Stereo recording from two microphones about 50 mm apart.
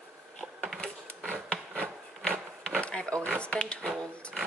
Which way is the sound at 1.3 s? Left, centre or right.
Centre.